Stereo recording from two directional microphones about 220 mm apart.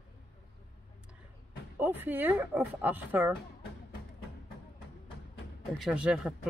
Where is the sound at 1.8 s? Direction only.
10° right (ahead or behind).